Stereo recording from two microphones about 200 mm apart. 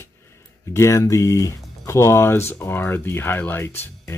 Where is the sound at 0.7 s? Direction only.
15° left (ahead or behind).